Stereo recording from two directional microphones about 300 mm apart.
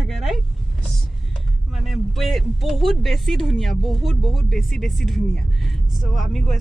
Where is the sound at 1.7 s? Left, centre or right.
Centre.